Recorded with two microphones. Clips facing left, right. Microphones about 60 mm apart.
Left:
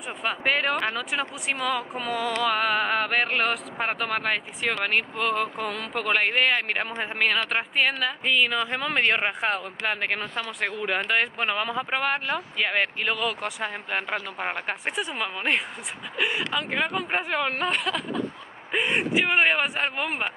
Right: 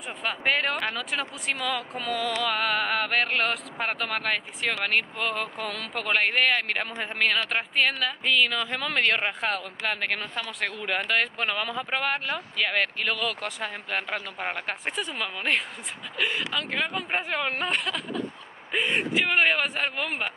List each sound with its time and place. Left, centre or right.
0.2 s speech: centre
2.1 s music: left
2.5 s speech: centre
17.1 s speech: centre
20.1 s music: left